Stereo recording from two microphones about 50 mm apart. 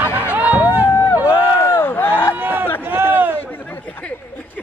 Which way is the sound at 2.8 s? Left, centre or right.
Right.